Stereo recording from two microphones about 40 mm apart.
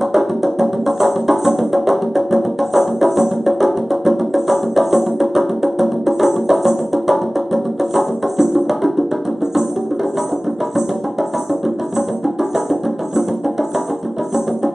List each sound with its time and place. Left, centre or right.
0.1 s music: centre